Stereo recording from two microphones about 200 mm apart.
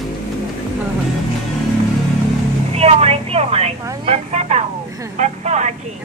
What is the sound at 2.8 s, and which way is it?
Speech, 30° right (ahead or behind).